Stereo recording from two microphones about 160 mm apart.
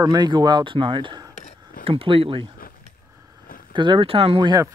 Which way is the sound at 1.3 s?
45° left (ahead or behind).